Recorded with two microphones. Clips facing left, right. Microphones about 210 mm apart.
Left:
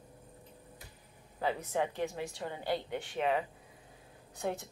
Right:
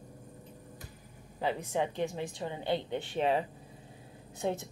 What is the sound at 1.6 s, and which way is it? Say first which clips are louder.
A woman's voice: right 2 dB; 20° right (ahead or behind).